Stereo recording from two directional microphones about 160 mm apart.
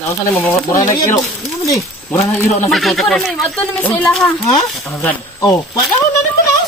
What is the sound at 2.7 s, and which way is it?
Speech, centre (ahead or behind).